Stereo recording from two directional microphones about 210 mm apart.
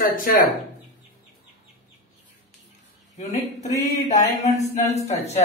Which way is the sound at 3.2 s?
35° left (ahead or behind).